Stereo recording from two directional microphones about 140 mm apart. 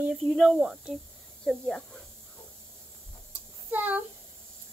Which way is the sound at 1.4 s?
5° left (ahead or behind).